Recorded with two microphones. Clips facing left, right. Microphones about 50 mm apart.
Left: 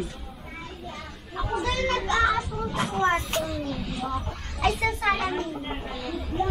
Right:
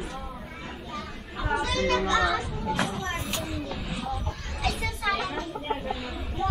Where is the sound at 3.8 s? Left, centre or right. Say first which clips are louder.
Left 1 dB; centre.